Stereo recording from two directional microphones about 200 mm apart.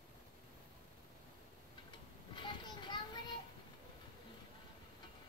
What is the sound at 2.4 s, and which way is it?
Children playing, 25° left (ahead or behind).